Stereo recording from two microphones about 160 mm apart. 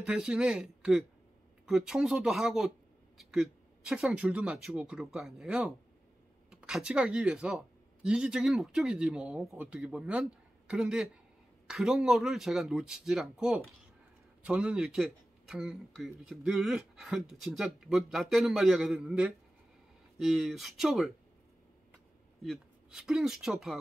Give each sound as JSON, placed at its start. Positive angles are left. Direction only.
{"t": 0.0, "sound": "speech", "side_deg": -5}
{"t": 22.4, "sound": "speech", "side_deg": 0}